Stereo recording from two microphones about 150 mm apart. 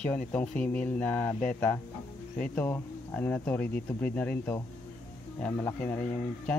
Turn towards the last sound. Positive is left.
turn(degrees=10)  # may be behind; listen again after turning